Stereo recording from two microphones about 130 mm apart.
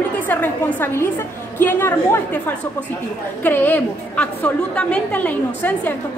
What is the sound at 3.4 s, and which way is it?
A woman's voice, 15° left (ahead or behind).